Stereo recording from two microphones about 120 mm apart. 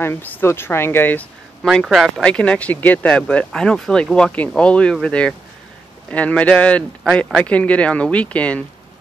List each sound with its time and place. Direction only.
0.0 s speech: 15° left (ahead or behind)
1.6 s speech: centre (ahead or behind)